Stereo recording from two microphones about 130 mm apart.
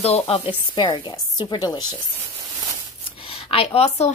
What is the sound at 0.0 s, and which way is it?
Speech, 55° left (ahead or behind).